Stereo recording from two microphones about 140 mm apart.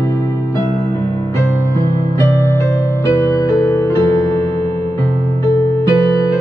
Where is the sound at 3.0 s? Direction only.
20° left (ahead or behind).